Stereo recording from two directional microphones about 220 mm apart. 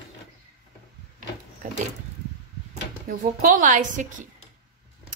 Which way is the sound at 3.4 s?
35° right (ahead or behind).